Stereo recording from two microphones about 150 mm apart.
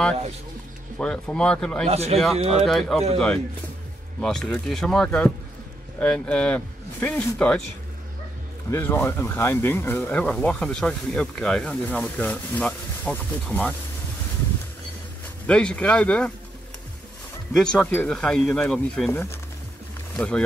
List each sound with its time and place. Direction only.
0.9 s speech: 5° left (ahead or behind)
1.9 s speech: 45° right (ahead or behind)
2.5 s speech: centre (ahead or behind)
4.2 s speech: 5° left (ahead or behind)
8.6 s speech: 15° left (ahead or behind)
15.4 s speech: 5° left (ahead or behind)
17.5 s speech: 5° left (ahead or behind)
20.2 s speech: 5° left (ahead or behind)